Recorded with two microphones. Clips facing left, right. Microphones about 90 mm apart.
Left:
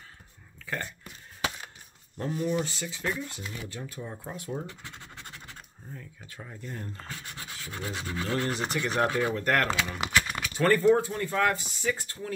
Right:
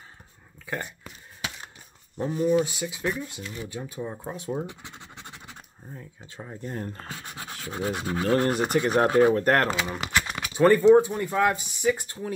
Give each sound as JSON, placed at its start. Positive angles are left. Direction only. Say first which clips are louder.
{"t": 0.7, "sound": "speech", "louder": "right 2 dB", "side_deg": -15}
{"t": 2.1, "sound": "speech", "louder": "right 6 dB", "side_deg": -15}
{"t": 6.7, "sound": "speech", "louder": "right 6 dB", "side_deg": -45}
{"t": 7.3, "sound": "a sound", "louder": "right 4 dB", "side_deg": -40}
{"t": 8.1, "sound": "speech", "louder": "right 7 dB", "side_deg": -45}
{"t": 9.9, "sound": "speech", "louder": "even", "side_deg": 0}
{"t": 10.3, "sound": "speech", "louder": "right 8 dB", "side_deg": -15}